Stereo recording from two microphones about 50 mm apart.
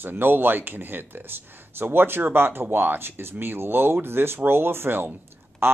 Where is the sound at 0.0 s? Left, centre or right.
Right.